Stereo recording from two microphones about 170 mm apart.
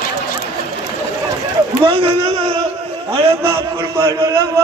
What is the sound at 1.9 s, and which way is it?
Speech, 30° right (ahead or behind).